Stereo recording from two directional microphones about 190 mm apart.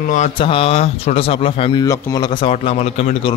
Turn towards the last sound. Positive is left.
turn(degrees=35)  # may be behind; listen again after turning